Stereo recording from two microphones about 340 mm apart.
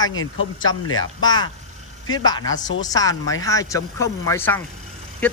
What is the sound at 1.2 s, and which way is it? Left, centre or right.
Speech, centre.